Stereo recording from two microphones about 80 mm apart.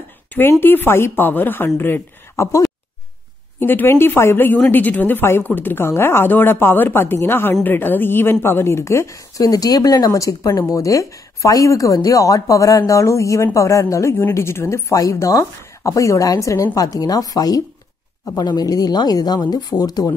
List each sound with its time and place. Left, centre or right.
0.5 s speech: left
2.3 s speech: left
3.5 s a woman's voice: left